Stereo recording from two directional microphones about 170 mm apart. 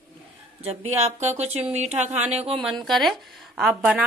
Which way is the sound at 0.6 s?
40° right (ahead or behind).